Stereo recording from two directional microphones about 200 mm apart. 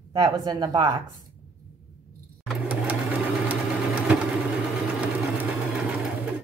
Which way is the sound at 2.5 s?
5° right (ahead or behind).